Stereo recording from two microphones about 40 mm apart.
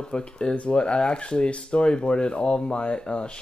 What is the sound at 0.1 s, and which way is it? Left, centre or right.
Speech, left.